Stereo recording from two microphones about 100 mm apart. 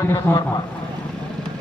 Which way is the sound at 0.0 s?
25° left (ahead or behind).